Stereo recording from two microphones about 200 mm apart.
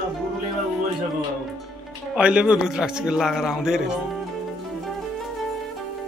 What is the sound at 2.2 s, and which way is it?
Speech, 5° right (ahead or behind).